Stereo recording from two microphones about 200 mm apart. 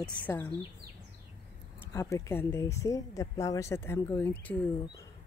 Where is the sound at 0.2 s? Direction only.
10° left (ahead or behind).